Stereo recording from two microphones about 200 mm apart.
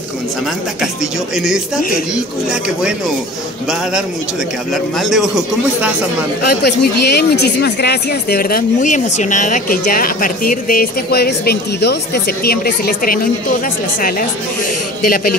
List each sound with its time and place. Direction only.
1.3 s a man's voice: centre (ahead or behind)
4.9 s a man's voice: centre (ahead or behind)
6.4 s speech: 55° left (ahead or behind)